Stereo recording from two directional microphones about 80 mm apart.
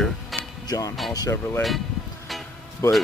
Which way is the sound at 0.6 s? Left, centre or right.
Left.